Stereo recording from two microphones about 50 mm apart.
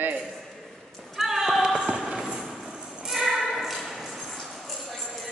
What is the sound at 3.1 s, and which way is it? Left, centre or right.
Ping, centre.